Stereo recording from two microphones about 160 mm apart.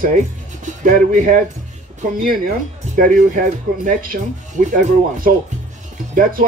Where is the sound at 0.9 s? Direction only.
55° right (ahead or behind).